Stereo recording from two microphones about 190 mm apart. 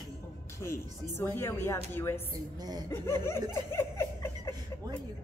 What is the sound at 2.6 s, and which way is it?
Speech, 20° right (ahead or behind).